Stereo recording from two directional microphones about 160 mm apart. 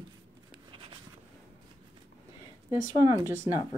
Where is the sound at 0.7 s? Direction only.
35° right (ahead or behind).